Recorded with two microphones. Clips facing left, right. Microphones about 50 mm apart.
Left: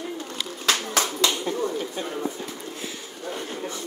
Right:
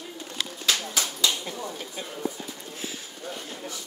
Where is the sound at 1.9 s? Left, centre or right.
Left.